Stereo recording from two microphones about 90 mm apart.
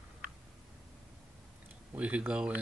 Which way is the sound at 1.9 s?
15° right (ahead or behind).